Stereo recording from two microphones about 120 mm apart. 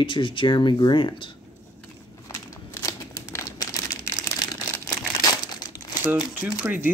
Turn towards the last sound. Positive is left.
turn(degrees=-15)  # may be behind; listen again after turning